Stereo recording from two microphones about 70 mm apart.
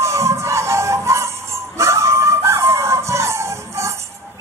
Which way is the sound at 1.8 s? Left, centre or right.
Right.